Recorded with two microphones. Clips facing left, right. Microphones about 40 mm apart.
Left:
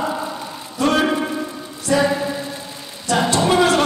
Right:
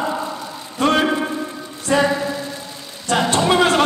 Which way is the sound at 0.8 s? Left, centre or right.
Right.